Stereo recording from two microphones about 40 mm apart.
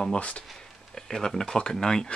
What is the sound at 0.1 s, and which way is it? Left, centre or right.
Speech, left.